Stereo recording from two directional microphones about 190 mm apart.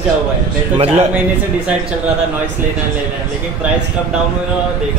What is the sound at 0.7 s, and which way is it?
Speech, 30° right (ahead or behind).